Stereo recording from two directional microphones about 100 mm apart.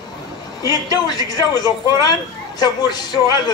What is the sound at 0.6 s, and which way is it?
A man's voice, 40° left (ahead or behind).